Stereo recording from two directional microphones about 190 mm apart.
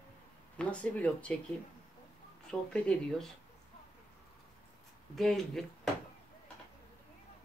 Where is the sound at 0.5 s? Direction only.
5° left (ahead or behind).